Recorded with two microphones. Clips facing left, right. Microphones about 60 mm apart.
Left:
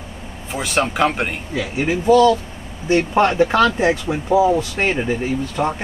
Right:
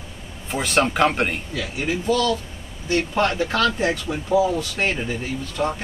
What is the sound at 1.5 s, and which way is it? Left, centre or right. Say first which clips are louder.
Speech: left 5 dB; left.